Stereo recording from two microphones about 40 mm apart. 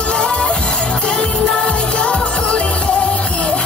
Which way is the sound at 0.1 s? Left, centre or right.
Left.